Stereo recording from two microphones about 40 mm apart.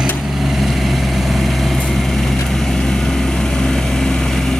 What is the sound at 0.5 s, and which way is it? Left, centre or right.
Vehicle, centre.